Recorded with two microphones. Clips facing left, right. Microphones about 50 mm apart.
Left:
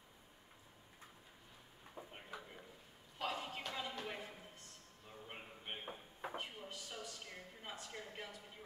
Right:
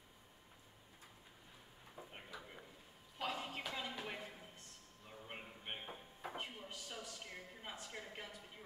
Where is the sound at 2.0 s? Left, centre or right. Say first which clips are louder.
Left 2 dB; left.